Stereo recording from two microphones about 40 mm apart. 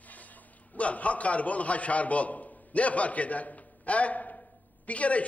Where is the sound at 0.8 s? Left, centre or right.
Left.